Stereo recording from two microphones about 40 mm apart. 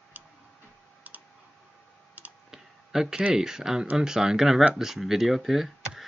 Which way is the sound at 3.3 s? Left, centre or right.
Centre.